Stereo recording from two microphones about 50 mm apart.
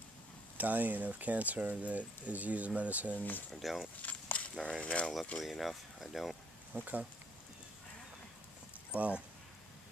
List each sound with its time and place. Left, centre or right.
0.6 s speech: right
3.2 s speech: left
3.5 s speech: centre
4.0 s walk: left
4.6 s mechanisms: left
5.4 s speech: centre
6.7 s speech: right
8.9 s speech: right